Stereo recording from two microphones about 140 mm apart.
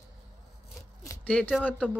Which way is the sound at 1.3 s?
10° left (ahead or behind).